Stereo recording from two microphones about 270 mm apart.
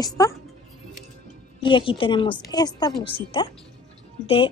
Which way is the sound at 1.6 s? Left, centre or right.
Centre.